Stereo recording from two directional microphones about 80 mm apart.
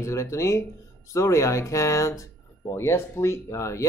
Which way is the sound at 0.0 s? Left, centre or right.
Left.